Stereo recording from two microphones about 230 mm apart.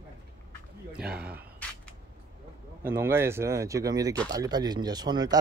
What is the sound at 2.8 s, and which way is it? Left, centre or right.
Speech, centre.